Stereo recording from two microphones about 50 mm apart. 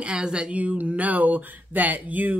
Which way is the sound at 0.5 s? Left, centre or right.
Right.